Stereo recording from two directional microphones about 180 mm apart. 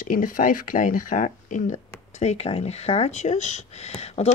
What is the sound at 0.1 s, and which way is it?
Speech, 50° left (ahead or behind).